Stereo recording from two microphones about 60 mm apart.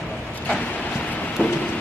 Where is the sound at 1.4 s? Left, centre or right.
Left.